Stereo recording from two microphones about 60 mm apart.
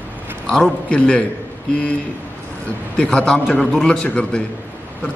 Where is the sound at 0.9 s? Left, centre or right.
Centre.